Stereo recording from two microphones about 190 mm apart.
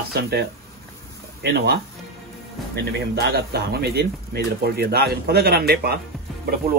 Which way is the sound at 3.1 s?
60° right (ahead or behind).